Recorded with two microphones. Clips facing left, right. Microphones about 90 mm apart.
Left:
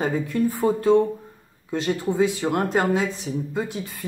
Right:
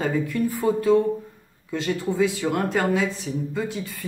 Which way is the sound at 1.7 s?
20° left (ahead or behind).